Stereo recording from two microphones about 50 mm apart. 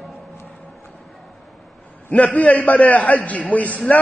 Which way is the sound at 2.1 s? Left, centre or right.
Left.